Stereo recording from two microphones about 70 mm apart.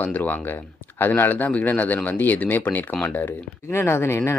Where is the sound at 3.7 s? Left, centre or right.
Left.